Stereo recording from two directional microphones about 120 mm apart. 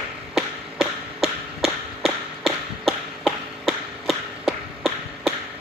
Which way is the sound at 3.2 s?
Centre (ahead or behind).